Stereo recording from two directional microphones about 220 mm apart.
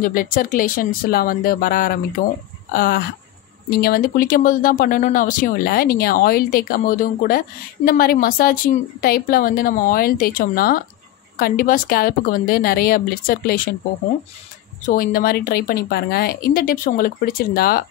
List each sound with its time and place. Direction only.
0.0 s speech: 40° left (ahead or behind)
14.9 s speech: 40° left (ahead or behind)